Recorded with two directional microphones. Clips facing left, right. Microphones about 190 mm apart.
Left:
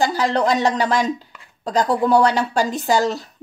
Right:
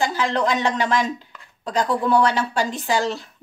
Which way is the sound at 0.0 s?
40° left (ahead or behind).